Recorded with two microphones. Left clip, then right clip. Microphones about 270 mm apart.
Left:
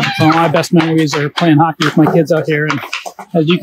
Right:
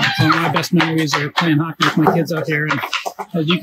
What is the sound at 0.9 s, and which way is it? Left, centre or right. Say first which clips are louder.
Speech: left 3 dB; centre.